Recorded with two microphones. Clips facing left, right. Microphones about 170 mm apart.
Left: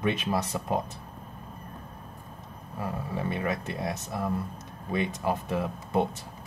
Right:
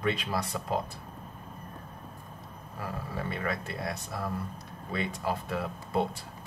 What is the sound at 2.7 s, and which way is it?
Speech, 20° left (ahead or behind).